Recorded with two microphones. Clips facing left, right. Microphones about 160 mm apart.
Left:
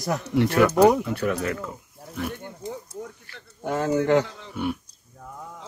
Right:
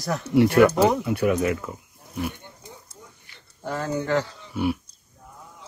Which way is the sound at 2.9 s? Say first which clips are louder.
Left 13 dB; 60° left (ahead or behind).